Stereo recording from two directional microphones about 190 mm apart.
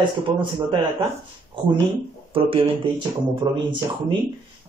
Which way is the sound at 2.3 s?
30° right (ahead or behind).